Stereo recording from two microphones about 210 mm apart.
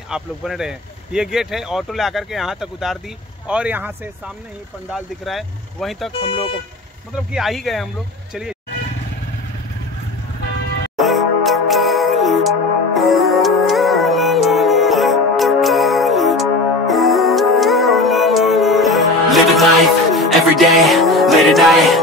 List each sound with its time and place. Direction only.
0.1 s speech: centre (ahead or behind)
6.1 s speech: 25° left (ahead or behind)
7.3 s speech: centre (ahead or behind)
11.0 s music: centre (ahead or behind)